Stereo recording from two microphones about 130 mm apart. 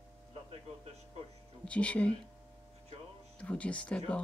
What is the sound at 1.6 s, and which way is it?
Speech, 10° left (ahead or behind).